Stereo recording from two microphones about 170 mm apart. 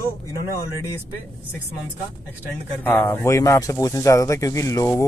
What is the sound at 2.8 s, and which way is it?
Speech, 15° left (ahead or behind).